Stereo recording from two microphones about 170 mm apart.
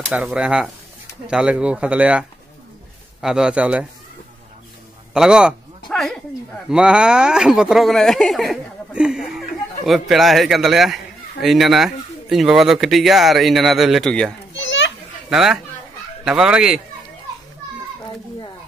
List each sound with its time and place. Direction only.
0.1 s speech: 5° right (ahead or behind)
5.1 s speech: 5° right (ahead or behind)
14.5 s children playing: 90° left
15.2 s speech: 5° right (ahead or behind)